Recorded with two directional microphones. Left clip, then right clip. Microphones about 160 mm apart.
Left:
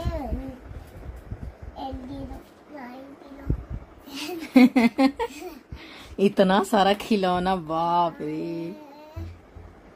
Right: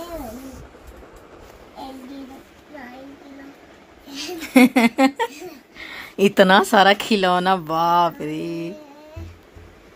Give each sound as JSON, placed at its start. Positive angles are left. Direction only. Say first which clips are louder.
{"t": 4.4, "sound": "speech", "louder": "right 4 dB", "side_deg": -5}
{"t": 8.2, "sound": "mantra", "louder": "right 3 dB", "side_deg": -20}